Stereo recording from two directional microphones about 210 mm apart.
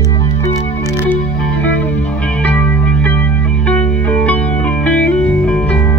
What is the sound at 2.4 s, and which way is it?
Music, 5° left (ahead or behind).